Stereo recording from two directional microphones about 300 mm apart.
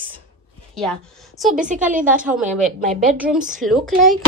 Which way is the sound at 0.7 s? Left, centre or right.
Centre.